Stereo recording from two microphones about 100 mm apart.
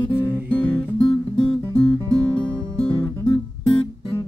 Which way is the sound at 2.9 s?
60° left (ahead or behind).